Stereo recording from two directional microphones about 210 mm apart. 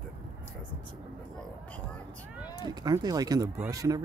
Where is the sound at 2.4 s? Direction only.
20° left (ahead or behind).